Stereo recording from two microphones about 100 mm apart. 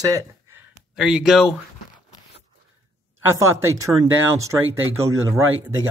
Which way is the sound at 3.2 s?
25° right (ahead or behind).